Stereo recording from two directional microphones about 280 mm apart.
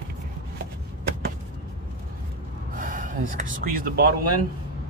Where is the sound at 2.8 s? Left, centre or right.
Right.